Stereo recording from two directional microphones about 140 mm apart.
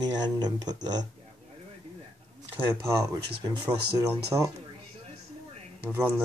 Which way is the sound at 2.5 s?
20° right (ahead or behind).